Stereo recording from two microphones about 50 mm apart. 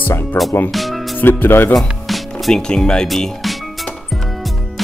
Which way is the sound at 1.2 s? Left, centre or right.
Left.